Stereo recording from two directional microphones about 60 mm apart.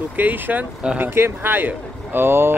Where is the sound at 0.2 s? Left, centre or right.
Right.